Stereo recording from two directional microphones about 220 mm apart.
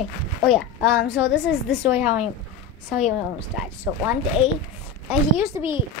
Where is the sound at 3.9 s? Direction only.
10° right (ahead or behind).